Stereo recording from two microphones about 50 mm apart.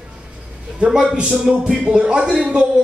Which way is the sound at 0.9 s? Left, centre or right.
Centre.